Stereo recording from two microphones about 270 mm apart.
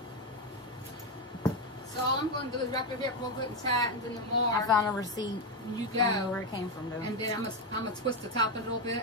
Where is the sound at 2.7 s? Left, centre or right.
Centre.